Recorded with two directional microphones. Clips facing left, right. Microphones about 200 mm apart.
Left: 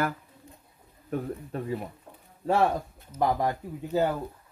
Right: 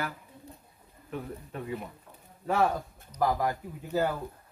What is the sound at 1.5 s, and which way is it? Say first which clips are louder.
Speech: left 4 dB; 40° left (ahead or behind).